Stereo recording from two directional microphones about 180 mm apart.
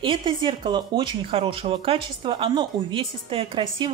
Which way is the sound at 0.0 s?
30° right (ahead or behind).